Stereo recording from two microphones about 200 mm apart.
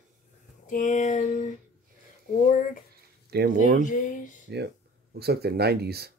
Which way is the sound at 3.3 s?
50° right (ahead or behind).